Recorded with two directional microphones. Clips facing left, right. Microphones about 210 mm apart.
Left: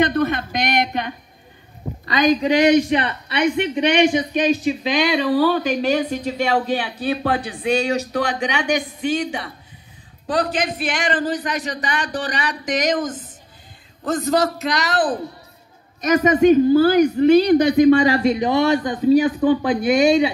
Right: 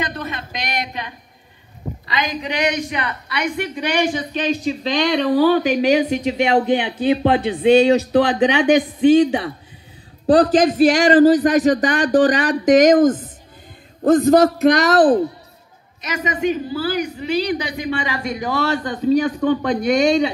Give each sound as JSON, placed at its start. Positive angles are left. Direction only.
{"t": 0.0, "sound": "speech", "side_deg": 55}
{"t": 2.0, "sound": "speech", "side_deg": 40}
{"t": 2.6, "sound": "a man's voice", "side_deg": 30}
{"t": 16.0, "sound": "speech", "side_deg": 40}